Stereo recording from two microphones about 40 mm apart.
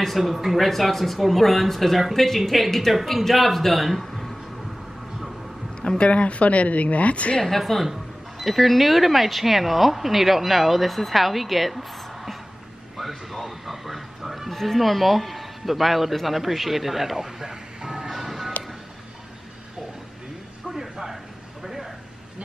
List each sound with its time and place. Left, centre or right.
0.0 s speech: centre
5.8 s speech: left
7.4 s speech: centre
12.9 s a sound: centre
17.5 s vehicle: centre
18.1 s music: centre
20.7 s a sound: centre